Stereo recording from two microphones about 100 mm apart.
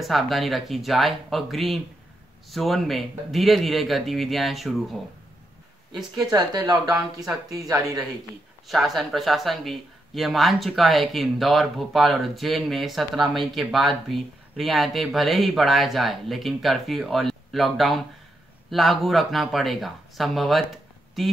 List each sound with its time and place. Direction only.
0.0 s speech: centre (ahead or behind)
6.3 s speech: 40° right (ahead or behind)
8.6 s speech: centre (ahead or behind)